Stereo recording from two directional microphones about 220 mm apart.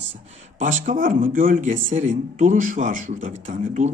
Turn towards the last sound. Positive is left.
turn(degrees=-35)  # may be behind; listen again after turning